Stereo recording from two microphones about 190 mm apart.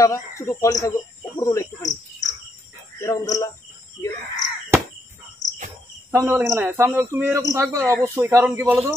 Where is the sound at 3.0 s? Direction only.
15° left (ahead or behind).